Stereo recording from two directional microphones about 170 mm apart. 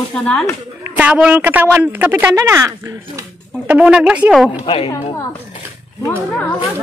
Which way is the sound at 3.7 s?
5° right (ahead or behind).